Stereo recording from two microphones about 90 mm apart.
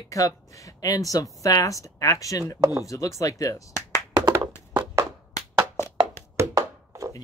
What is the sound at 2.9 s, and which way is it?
Speech, 35° left (ahead or behind).